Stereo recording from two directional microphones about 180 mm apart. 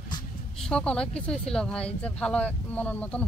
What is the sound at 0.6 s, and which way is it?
Speech, 5° left (ahead or behind).